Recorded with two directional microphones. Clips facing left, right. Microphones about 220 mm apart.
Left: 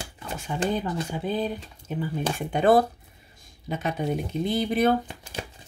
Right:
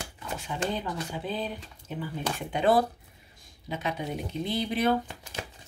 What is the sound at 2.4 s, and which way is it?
Speech, 50° left (ahead or behind).